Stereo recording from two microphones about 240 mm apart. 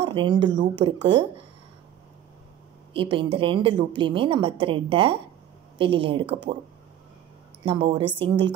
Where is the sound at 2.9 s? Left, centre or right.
Right.